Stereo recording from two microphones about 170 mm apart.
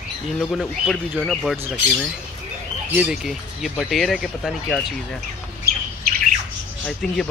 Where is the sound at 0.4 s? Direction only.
Centre (ahead or behind).